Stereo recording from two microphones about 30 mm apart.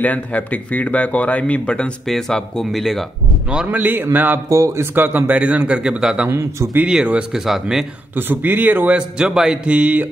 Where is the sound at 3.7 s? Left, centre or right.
Right.